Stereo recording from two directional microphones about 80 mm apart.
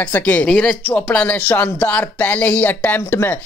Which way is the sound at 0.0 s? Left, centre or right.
Centre.